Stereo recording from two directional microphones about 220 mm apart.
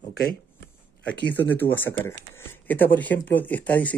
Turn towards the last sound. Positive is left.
turn(degrees=5)  # may be behind; listen again after turning